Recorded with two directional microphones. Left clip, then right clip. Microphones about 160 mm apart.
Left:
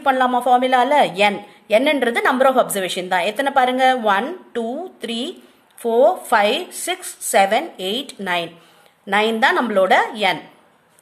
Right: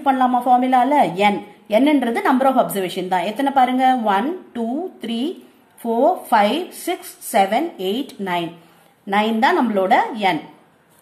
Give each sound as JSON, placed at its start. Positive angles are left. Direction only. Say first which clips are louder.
{"t": 0.0, "sound": "a woman's voice", "louder": "even", "side_deg": 40}